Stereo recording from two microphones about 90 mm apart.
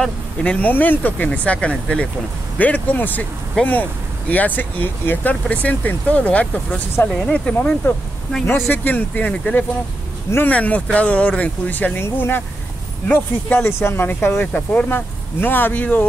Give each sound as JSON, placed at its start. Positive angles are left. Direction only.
{"t": 0.0, "sound": "speech", "side_deg": 10}
{"t": 7.5, "sound": "speech", "side_deg": 20}
{"t": 14.4, "sound": "speech", "side_deg": 15}